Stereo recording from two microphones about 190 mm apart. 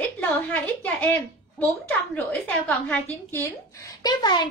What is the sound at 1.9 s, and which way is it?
A woman's voice, 10° left (ahead or behind).